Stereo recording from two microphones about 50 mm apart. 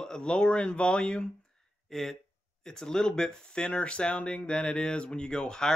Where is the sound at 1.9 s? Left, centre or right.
Centre.